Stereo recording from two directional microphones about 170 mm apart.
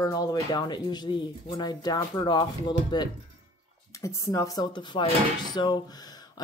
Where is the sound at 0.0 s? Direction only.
20° left (ahead or behind).